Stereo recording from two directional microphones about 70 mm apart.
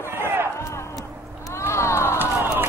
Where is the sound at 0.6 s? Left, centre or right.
Left.